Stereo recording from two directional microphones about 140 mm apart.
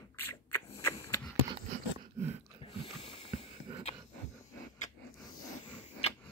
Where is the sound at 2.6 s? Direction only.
40° left (ahead or behind).